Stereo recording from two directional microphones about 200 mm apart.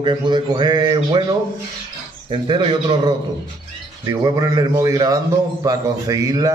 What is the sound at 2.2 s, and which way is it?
A man's voice, 25° right (ahead or behind).